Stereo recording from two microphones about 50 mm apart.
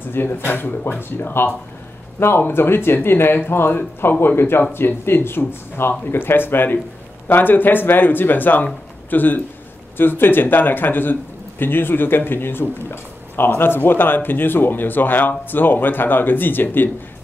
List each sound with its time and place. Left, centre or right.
0.1 s a man's voice: left